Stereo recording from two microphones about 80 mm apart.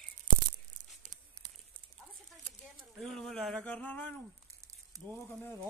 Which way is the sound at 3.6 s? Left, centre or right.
Centre.